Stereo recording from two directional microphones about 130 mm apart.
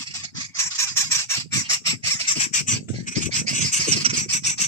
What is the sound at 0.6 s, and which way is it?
Bird, 20° left (ahead or behind).